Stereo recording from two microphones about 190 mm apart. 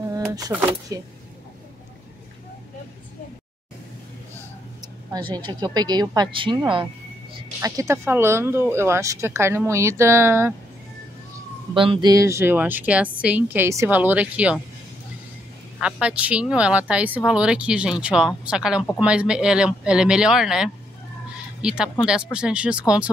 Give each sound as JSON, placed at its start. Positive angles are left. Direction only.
{"t": 0.1, "sound": "a sound", "side_deg": -20}
{"t": 0.9, "sound": "speech", "side_deg": -15}
{"t": 5.3, "sound": "speech", "side_deg": -20}
{"t": 11.7, "sound": "speech", "side_deg": -25}
{"t": 15.8, "sound": "speech", "side_deg": -5}